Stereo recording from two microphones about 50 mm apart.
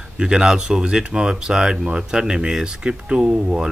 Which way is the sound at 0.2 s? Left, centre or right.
Centre.